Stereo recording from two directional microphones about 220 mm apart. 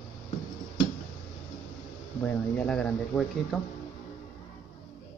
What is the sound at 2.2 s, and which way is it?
Speech, 5° left (ahead or behind).